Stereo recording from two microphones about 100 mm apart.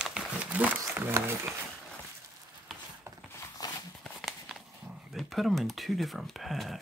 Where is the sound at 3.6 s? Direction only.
40° left (ahead or behind).